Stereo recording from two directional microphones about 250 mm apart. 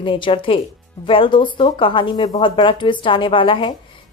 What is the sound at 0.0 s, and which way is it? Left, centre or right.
A woman's voice, centre.